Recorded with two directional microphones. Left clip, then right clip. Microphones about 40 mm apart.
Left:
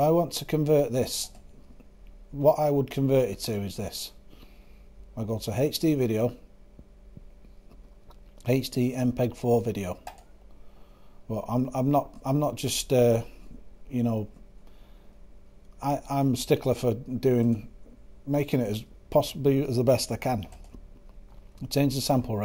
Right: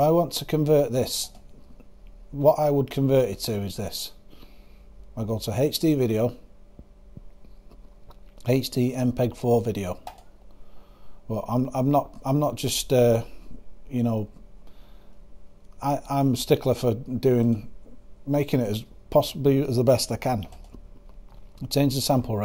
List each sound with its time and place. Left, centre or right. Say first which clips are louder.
0.0 s speech: right 2 dB; centre
2.3 s speech: right 2 dB; centre
8.1 s speech: right 2 dB; right
11.2 s speech: right 2 dB; right
15.8 s speech: right 3 dB; right